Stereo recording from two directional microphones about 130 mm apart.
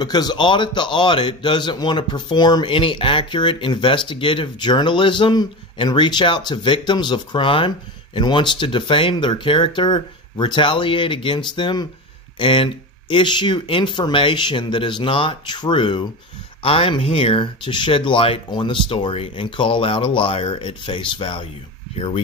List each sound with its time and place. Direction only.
0.0 s speech: 30° left (ahead or behind)